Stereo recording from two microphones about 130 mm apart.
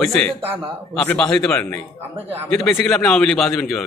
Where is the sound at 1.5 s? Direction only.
15° left (ahead or behind).